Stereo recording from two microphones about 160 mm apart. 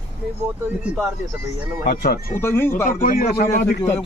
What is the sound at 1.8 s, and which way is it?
Speech, 75° left (ahead or behind).